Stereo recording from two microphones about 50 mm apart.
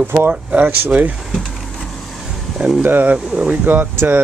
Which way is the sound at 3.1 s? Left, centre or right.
Right.